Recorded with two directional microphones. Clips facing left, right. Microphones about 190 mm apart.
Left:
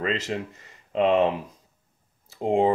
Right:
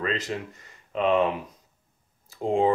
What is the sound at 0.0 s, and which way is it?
Speech, 30° left (ahead or behind).